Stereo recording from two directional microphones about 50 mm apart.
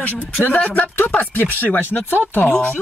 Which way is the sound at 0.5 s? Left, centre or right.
Left.